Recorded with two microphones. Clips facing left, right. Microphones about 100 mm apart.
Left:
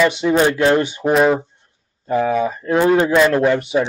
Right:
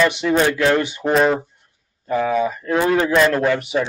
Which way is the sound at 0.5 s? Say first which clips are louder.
Left 2 dB; 25° left (ahead or behind).